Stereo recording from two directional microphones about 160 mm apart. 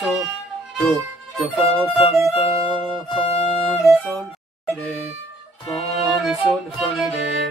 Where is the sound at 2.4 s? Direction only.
35° left (ahead or behind).